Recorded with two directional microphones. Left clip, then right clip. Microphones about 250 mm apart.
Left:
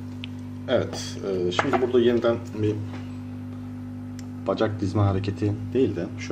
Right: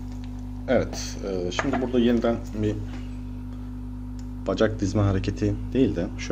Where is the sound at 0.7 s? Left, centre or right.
Right.